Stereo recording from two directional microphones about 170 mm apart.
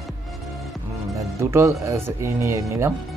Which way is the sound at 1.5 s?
15° right (ahead or behind).